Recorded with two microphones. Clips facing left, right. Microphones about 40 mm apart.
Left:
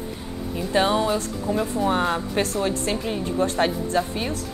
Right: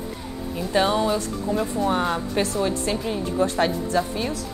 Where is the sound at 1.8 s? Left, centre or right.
Centre.